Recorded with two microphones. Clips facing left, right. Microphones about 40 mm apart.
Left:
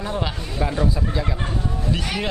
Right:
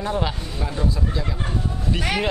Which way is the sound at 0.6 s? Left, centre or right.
Left.